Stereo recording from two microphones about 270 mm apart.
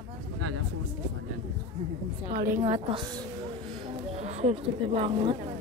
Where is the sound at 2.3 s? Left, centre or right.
Right.